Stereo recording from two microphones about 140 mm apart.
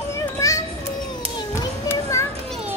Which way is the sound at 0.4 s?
25° left (ahead or behind).